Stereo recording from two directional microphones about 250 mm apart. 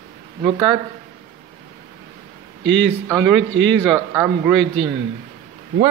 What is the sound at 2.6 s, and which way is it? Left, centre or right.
Speech, right.